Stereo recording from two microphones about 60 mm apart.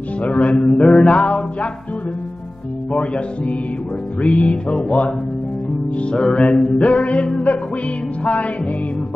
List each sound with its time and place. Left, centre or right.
0.2 s mantra: left
1.0 s music: centre
2.9 s music: centre
6.1 s mantra: centre
6.8 s music: left